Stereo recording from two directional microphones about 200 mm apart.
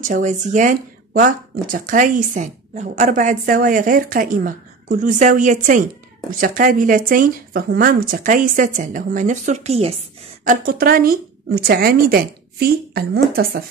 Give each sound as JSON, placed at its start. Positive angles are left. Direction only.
{"t": 0.0, "sound": "speech", "side_deg": -40}
{"t": 10.4, "sound": "speech", "side_deg": -45}